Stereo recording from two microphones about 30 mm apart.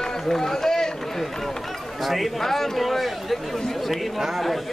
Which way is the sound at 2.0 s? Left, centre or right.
Centre.